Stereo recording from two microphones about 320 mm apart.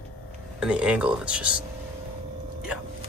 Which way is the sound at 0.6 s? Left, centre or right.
Centre.